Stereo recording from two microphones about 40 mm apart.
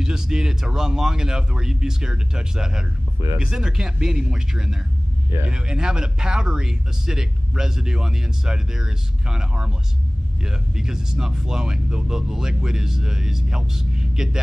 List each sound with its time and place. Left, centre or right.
0.0 s speech: centre